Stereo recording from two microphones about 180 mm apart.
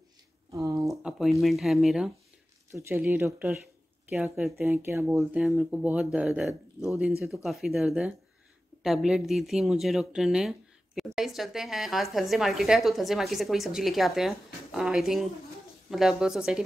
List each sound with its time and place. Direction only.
0.5 s a sound: 15° right (ahead or behind)
0.8 s speech: centre (ahead or behind)
2.7 s a woman's voice: 15° right (ahead or behind)